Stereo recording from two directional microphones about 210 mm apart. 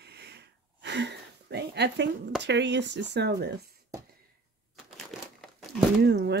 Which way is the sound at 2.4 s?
55° right (ahead or behind).